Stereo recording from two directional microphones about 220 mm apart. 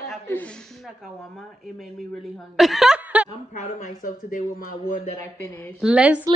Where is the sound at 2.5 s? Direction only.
Centre (ahead or behind).